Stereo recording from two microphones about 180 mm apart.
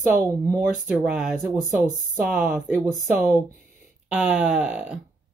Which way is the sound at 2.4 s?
10° right (ahead or behind).